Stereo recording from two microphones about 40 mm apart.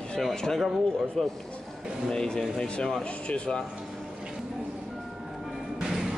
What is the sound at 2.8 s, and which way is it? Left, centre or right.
Speech, centre.